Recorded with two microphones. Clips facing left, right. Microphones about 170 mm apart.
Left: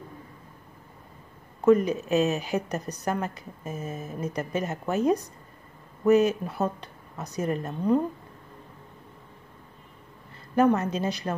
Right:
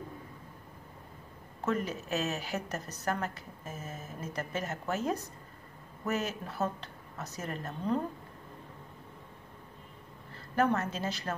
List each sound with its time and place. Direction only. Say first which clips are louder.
1.6 s a woman's voice: left 12 dB; 15° left (ahead or behind)
10.5 s a woman's voice: left 7 dB; 15° left (ahead or behind)